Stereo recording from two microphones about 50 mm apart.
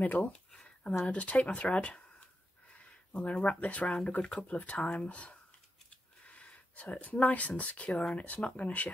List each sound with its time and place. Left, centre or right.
0.0 s speech: left
0.3 s speech: centre